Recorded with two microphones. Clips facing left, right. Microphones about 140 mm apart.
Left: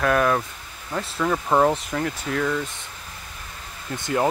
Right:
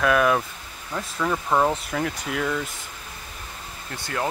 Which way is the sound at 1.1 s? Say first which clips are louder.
Left 2 dB; 10° left (ahead or behind).